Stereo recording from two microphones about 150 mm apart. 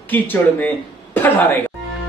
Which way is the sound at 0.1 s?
10° left (ahead or behind).